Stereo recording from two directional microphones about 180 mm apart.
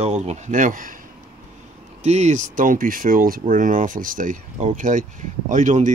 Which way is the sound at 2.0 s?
40° right (ahead or behind).